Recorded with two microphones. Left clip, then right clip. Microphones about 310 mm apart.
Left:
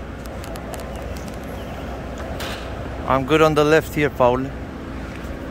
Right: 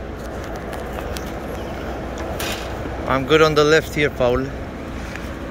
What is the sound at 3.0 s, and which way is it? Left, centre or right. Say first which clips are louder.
Speech: right 1 dB; centre.